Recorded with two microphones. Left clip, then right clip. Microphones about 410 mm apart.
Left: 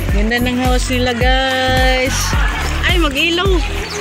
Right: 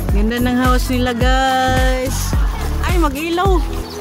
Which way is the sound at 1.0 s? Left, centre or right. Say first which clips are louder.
Left 1 dB; right.